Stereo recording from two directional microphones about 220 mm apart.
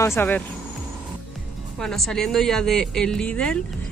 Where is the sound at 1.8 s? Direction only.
Centre (ahead or behind).